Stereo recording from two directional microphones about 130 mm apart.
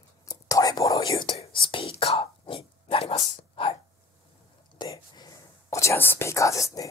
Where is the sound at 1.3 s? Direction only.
45° left (ahead or behind).